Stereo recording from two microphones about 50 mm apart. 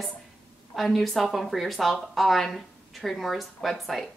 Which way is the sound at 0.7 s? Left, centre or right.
Centre.